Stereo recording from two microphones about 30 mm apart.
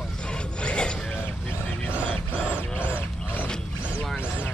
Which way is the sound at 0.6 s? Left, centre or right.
Left.